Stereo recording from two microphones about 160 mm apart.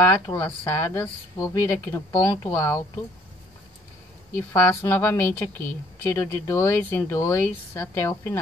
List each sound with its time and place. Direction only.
0.0 s a woman's voice: 15° left (ahead or behind)
4.4 s a woman's voice: 15° left (ahead or behind)